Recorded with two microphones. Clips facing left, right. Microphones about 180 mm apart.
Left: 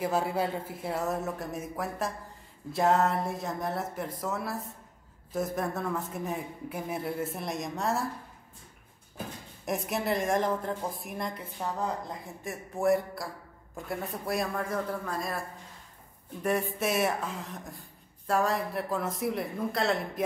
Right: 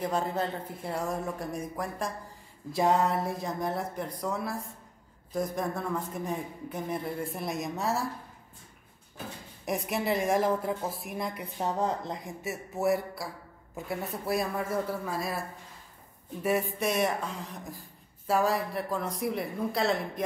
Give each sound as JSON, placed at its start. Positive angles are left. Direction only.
{"t": 0.0, "sound": "speech", "side_deg": 5}
{"t": 9.7, "sound": "speech", "side_deg": 0}
{"t": 11.3, "sound": "speech", "side_deg": -20}
{"t": 12.4, "sound": "speech", "side_deg": -5}
{"t": 16.4, "sound": "speech", "side_deg": 0}